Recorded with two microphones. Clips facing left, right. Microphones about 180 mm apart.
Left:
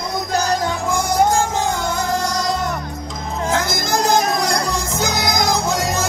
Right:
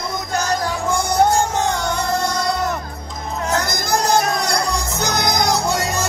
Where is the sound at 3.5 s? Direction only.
90° left.